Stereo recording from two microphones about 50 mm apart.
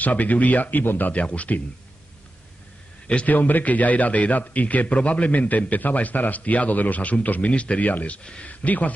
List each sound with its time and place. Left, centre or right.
0.0 s a man's voice: left
1.2 s speech: left
3.3 s a man's voice: left